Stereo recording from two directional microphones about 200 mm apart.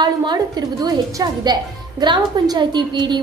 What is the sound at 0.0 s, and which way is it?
A woman's voice, 20° right (ahead or behind).